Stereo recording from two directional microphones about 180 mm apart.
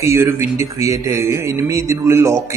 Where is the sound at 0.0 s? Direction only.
15° right (ahead or behind).